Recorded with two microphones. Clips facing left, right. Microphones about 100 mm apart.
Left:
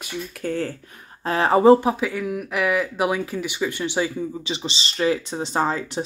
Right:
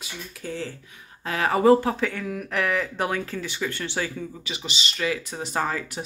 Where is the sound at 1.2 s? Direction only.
30° left (ahead or behind).